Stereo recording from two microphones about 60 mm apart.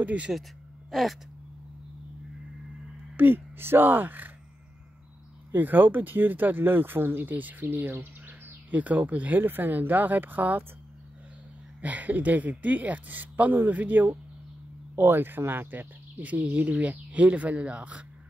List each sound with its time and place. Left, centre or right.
0.0 s speech: right
0.3 s a sound: centre
3.2 s speech: right
5.5 s speech: right
11.8 s speech: right